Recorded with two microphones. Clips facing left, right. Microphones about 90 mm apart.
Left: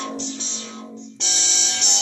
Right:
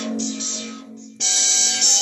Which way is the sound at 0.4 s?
35° left (ahead or behind).